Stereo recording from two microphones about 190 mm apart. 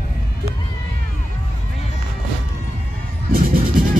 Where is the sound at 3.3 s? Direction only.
50° right (ahead or behind).